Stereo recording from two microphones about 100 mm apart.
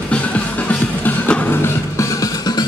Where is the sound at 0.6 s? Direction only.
15° left (ahead or behind).